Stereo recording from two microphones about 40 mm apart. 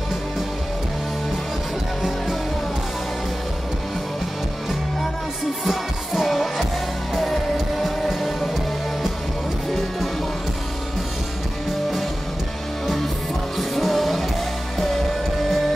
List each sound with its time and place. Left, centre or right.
2.0 s music: centre
5.7 s music: centre
7.5 s music: centre
12.8 s music: centre